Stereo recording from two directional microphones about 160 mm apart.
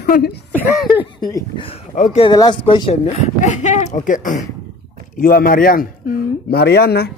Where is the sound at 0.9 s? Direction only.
25° left (ahead or behind).